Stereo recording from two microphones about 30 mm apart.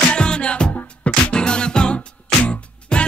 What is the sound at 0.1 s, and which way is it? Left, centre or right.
Music, left.